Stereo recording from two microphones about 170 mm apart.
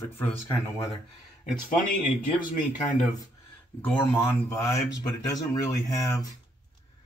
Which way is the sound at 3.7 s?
10° left (ahead or behind).